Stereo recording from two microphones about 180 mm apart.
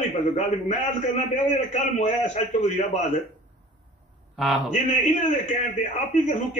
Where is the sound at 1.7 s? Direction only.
40° left (ahead or behind).